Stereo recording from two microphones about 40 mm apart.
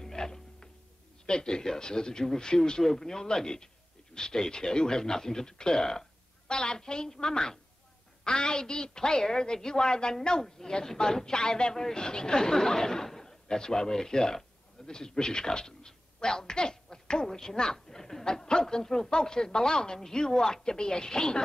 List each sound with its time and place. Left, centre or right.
0.0 s music: centre
1.2 s a man's voice: centre